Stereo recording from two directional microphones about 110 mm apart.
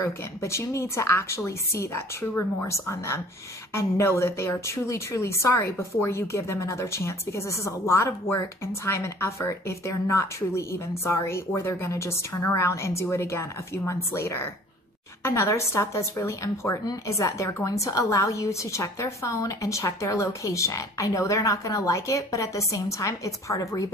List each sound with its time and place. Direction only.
0.0 s a woman's voice: 25° left (ahead or behind)